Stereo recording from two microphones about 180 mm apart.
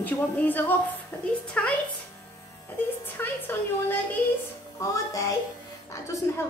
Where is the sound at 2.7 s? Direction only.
10° left (ahead or behind).